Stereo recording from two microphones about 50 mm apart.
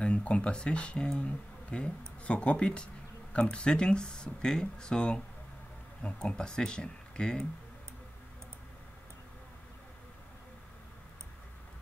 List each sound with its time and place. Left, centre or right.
0.0 s speech: left